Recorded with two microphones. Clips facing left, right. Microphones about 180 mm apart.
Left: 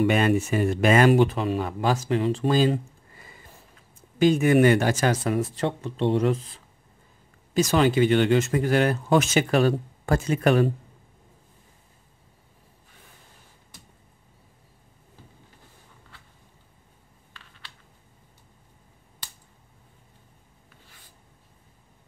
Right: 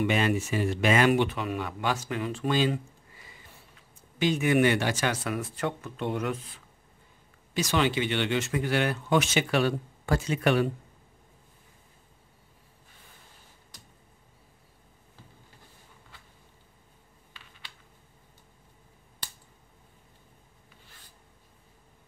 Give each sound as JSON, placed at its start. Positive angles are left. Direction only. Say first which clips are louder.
{"t": 0.0, "sound": "speech", "louder": "left 5 dB", "side_deg": 45}
{"t": 7.5, "sound": "speech", "louder": "left 6 dB", "side_deg": 45}